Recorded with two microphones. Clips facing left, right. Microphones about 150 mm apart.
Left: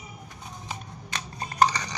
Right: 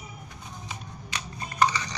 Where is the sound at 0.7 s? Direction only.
40° left (ahead or behind).